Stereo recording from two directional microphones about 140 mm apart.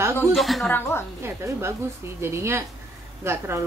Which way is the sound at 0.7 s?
15° left (ahead or behind).